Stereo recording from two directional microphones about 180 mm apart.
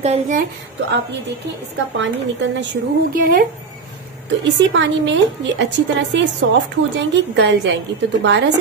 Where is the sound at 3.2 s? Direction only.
55° right (ahead or behind).